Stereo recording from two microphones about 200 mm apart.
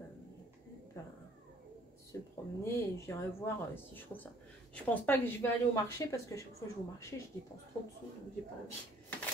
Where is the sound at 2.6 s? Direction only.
15° left (ahead or behind).